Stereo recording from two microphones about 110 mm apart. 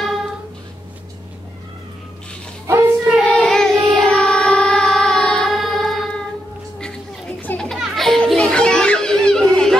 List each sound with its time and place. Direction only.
2.6 s child singing: 25° right (ahead or behind)
3.3 s child singing: 5° left (ahead or behind)
7.4 s children playing: 10° left (ahead or behind)